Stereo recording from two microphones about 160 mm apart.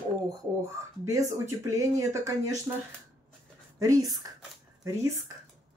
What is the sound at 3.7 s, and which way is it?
Speech, 20° right (ahead or behind).